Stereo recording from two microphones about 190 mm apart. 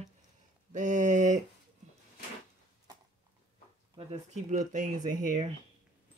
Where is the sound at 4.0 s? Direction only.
35° right (ahead or behind).